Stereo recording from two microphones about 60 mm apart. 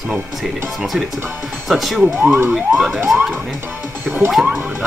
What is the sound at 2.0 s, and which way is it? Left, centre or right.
Speech, right.